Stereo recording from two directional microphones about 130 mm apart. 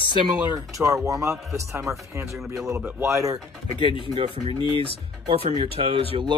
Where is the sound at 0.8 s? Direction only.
25° right (ahead or behind).